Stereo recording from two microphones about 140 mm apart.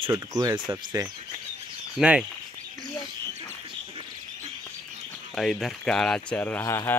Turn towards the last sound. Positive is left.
turn(degrees=15)  # may be behind; listen again after turning